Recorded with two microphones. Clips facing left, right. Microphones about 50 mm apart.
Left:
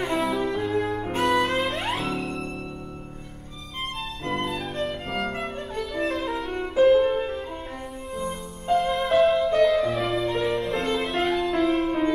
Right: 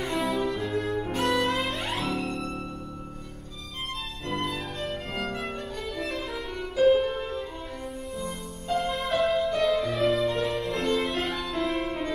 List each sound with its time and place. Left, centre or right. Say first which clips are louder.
0.2 s music: left 3 dB; centre
4.5 s music: left 4 dB; centre
6.5 s music: left 5 dB; left
6.8 s music: left 3 dB; centre
7.2 s music: left 4 dB; left
8.6 s music: left 5 dB; centre